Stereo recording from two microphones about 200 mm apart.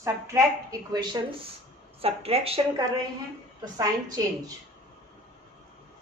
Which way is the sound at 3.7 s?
15° right (ahead or behind).